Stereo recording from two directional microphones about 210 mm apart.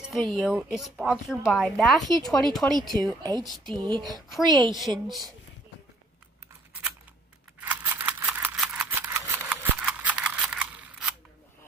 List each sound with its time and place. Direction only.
0.0 s a woman's voice: centre (ahead or behind)
3.2 s a woman's voice: 20° right (ahead or behind)
3.4 s a woman's voice: centre (ahead or behind)
3.8 s a woman's voice: 20° right (ahead or behind)
4.1 s a woman's voice: centre (ahead or behind)
4.5 s a woman's voice: 20° right (ahead or behind)
7.6 s scissors: 10° right (ahead or behind)